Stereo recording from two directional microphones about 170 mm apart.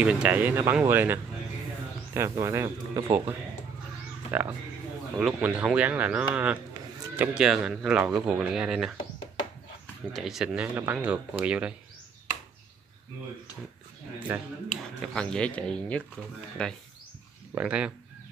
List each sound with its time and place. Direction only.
0.0 s speech: 5° right (ahead or behind)
4.3 s speech: 10° right (ahead or behind)
10.1 s speech: centre (ahead or behind)
14.3 s speech: 10° right (ahead or behind)
14.7 s speech: 5° left (ahead or behind)
17.6 s speech: 5° right (ahead or behind)